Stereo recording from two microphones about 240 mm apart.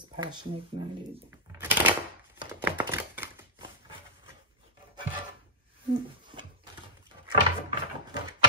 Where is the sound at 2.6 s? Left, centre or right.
Centre.